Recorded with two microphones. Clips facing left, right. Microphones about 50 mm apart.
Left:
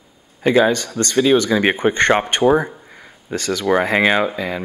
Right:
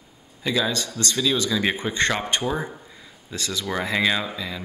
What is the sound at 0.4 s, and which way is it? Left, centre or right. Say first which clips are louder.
Speech: left 10 dB; left.